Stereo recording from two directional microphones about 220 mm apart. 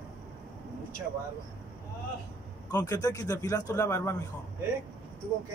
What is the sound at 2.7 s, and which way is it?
Speech, 15° left (ahead or behind).